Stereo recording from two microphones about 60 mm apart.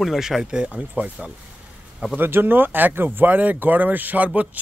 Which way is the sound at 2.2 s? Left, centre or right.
Right.